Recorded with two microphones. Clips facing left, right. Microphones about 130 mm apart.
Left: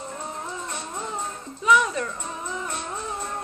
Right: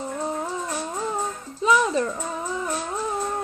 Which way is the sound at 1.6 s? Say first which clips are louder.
Right 1 dB; 30° right (ahead or behind).